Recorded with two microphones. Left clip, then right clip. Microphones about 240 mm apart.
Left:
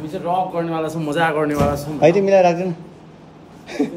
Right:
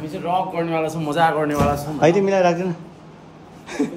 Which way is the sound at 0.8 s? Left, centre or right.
Centre.